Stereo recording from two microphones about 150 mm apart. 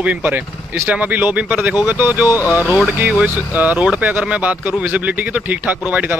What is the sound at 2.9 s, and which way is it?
Speech, 10° right (ahead or behind).